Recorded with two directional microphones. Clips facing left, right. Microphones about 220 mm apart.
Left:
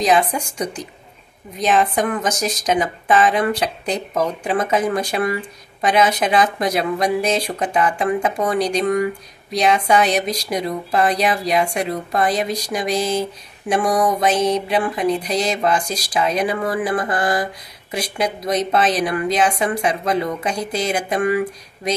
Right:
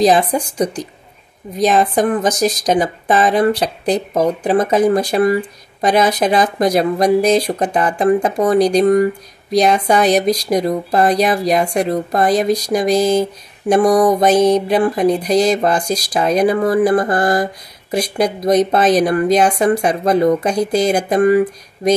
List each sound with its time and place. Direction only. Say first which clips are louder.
0.0 s speech: right 4 dB; 35° right (ahead or behind)